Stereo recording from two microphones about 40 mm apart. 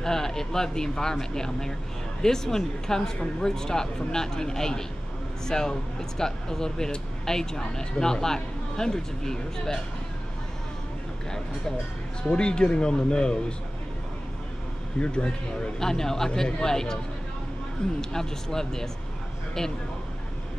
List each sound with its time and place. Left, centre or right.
0.0 s speech: centre
12.2 s a man's voice: left
15.0 s a man's voice: left
15.8 s speech: centre
16.3 s a man's voice: left